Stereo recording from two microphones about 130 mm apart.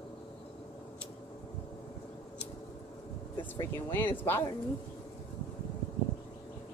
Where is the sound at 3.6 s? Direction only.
20° left (ahead or behind).